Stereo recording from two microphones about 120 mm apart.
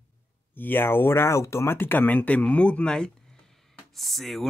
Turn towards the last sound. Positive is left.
turn(degrees=0)  # may be behind; listen again after turning